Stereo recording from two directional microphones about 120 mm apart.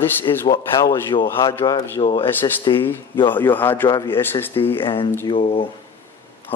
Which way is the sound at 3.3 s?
15° left (ahead or behind).